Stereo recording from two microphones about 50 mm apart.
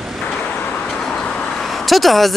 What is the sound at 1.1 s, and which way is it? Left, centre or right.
Vehicle, left.